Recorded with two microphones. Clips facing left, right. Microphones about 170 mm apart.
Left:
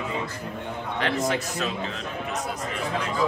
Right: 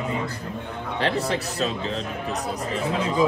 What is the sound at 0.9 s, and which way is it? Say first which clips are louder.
Speech: right 1 dB; 35° right (ahead or behind).